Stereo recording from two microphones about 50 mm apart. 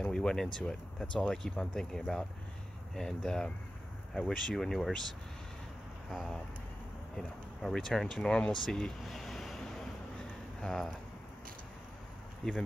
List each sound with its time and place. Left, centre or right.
0.0 s speech: centre
8.6 s a sound: centre
12.4 s speech: centre